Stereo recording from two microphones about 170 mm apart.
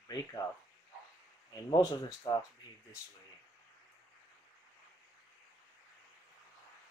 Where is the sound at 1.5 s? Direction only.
25° left (ahead or behind).